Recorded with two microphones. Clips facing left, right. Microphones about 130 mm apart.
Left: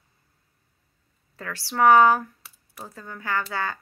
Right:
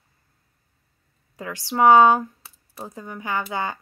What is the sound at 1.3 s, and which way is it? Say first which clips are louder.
A woman's voice: right 3 dB; 15° right (ahead or behind).